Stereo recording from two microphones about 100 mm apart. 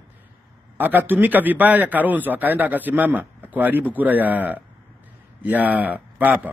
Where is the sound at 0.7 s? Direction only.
20° right (ahead or behind).